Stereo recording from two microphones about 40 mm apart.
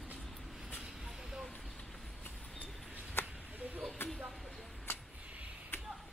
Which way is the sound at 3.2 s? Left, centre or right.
Left.